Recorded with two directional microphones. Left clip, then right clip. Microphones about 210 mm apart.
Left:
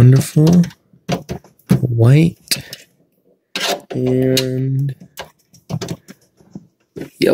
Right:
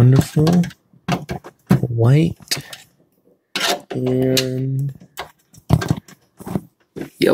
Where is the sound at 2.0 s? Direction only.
40° left (ahead or behind).